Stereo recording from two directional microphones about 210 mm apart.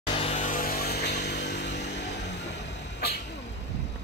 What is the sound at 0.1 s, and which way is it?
Vehicle, 30° left (ahead or behind).